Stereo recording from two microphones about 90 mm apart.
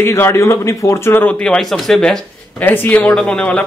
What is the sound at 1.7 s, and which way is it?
Speech, 5° left (ahead or behind).